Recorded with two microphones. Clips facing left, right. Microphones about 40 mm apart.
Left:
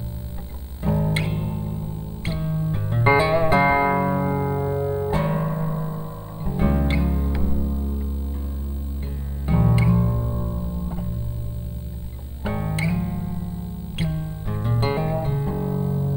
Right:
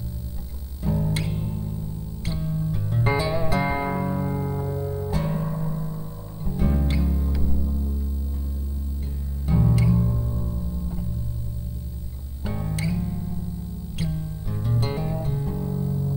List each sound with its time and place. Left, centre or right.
0.8 s music: left
9.5 s music: left
12.4 s music: left